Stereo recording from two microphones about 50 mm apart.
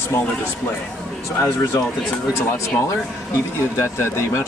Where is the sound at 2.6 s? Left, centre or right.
Left.